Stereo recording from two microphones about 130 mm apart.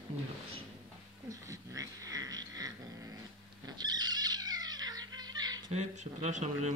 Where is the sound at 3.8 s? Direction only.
30° right (ahead or behind).